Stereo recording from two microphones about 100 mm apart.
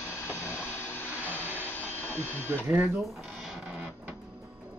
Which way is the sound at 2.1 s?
20° left (ahead or behind).